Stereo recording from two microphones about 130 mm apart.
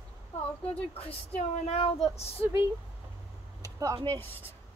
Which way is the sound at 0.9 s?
50° left (ahead or behind).